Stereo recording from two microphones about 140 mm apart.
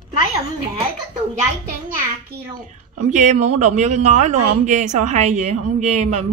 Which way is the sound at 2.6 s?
60° right (ahead or behind).